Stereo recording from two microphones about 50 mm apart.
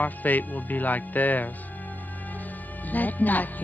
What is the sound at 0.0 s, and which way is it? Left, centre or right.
Speech, left.